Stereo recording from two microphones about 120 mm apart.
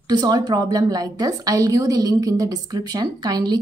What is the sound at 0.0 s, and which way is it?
Speech, 35° right (ahead or behind).